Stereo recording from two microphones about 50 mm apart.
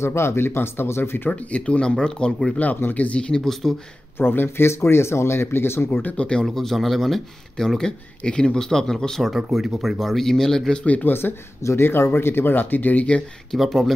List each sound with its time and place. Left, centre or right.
0.0 s speech: left
1.3 s speech: left
2.9 s speech: left
3.2 s speech: centre
4.2 s speech: left
6.0 s speech: left
6.4 s speech: centre
9.5 s speech: centre
10.8 s speech: left
11.1 s speech: left
13.5 s speech: centre